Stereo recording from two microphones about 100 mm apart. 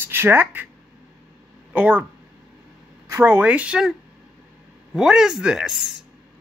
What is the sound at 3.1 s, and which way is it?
Speech, 25° right (ahead or behind).